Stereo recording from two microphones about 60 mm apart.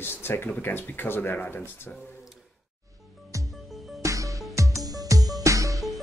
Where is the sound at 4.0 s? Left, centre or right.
Right.